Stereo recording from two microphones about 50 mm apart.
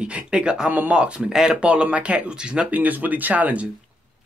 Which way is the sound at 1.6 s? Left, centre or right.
Right.